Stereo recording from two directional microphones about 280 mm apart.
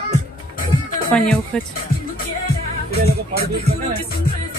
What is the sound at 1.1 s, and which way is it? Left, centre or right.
Speech, centre.